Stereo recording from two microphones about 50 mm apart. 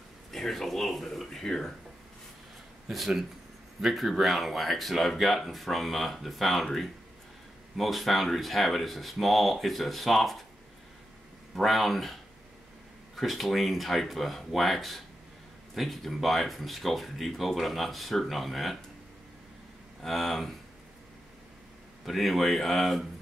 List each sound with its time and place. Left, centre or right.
0.3 s speech: centre
2.9 s speech: centre
11.5 s speech: centre
20.0 s speech: centre
22.0 s speech: centre